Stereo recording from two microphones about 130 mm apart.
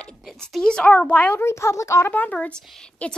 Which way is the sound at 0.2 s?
Centre (ahead or behind).